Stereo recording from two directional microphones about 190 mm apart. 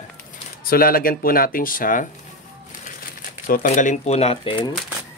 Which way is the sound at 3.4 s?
40° left (ahead or behind).